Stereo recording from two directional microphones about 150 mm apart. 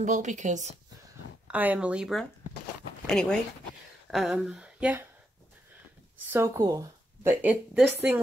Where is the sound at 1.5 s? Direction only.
10° right (ahead or behind).